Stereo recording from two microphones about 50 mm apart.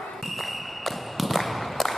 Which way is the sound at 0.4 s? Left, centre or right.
Centre.